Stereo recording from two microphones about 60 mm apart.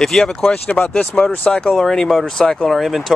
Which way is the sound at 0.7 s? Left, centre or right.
Left.